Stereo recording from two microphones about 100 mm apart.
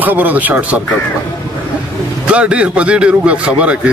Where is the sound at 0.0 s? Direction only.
15° right (ahead or behind).